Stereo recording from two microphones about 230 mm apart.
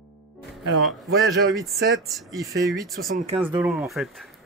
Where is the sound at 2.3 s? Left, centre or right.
Centre.